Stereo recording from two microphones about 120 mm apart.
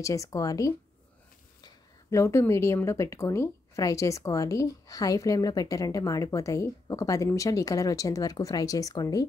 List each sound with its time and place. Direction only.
0.0 s speech: 25° left (ahead or behind)